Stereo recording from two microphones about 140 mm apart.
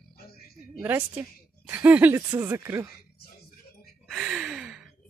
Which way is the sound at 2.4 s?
20° right (ahead or behind).